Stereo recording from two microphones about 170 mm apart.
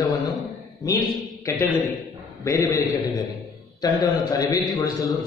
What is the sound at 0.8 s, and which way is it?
A man's voice, 20° left (ahead or behind).